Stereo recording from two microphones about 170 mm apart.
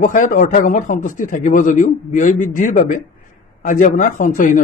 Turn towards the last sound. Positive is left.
turn(degrees=50)  # may be behind; listen again after turning